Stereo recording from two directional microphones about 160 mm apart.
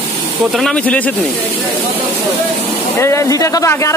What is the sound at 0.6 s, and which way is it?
Speech, 5° left (ahead or behind).